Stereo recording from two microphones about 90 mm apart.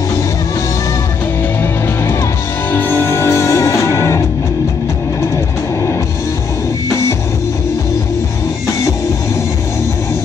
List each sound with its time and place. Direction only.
2.7 s music: 25° left (ahead or behind)